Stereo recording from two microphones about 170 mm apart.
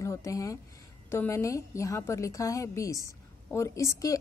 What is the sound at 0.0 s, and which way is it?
A woman's voice, 20° left (ahead or behind).